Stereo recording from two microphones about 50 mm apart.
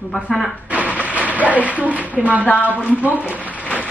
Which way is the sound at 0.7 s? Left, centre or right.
Right.